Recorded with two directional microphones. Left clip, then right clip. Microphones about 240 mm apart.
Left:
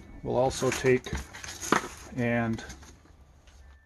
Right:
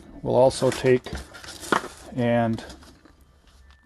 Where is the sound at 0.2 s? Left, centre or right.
Right.